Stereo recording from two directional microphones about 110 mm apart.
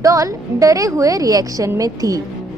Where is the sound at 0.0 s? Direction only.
30° right (ahead or behind).